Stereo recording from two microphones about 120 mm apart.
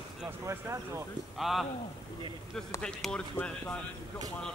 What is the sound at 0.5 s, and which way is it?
Speech, 25° right (ahead or behind).